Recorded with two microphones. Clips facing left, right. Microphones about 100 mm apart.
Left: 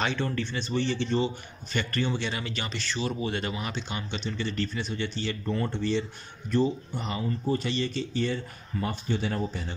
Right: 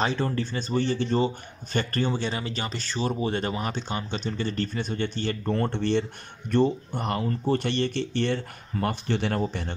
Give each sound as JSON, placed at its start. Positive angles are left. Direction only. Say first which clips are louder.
{"t": 0.0, "sound": "speech", "louder": "right 3 dB", "side_deg": -35}